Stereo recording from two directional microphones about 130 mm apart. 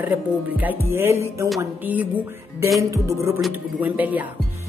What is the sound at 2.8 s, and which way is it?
Speech, 25° right (ahead or behind).